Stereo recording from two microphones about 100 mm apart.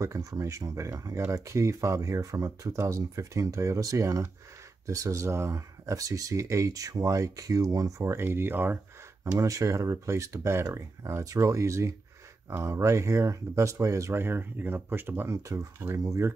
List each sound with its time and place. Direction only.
0.0 s speech: 35° right (ahead or behind)
9.3 s speech: 30° right (ahead or behind)